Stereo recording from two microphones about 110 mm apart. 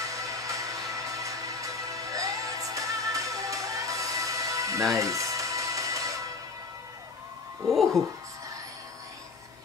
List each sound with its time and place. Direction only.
0.0 s music: 30° right (ahead or behind)
7.6 s speech: centre (ahead or behind)